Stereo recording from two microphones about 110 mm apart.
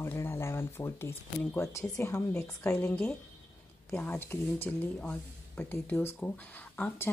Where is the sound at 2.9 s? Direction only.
10° left (ahead or behind).